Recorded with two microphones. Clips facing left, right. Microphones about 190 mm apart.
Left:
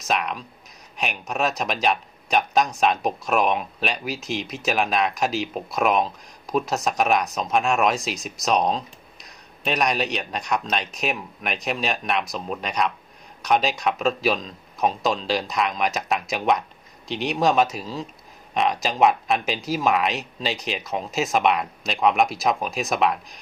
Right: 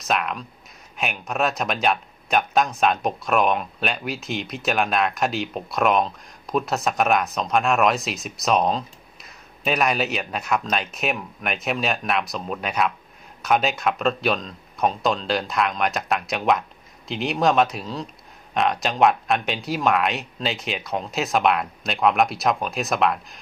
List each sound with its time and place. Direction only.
0.0 s speech: centre (ahead or behind)